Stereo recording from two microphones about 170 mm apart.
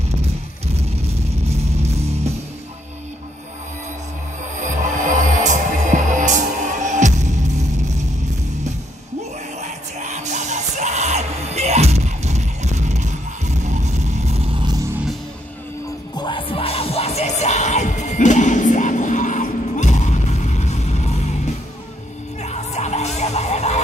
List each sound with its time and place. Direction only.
1.8 s music: 40° right (ahead or behind)
4.6 s music: 50° right (ahead or behind)
9.6 s music: 45° right (ahead or behind)
16.2 s music: 30° left (ahead or behind)